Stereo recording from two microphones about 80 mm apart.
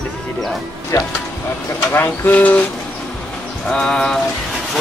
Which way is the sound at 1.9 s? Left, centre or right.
Left.